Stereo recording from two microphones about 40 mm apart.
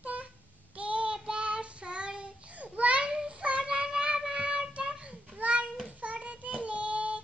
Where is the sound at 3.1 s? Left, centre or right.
Centre.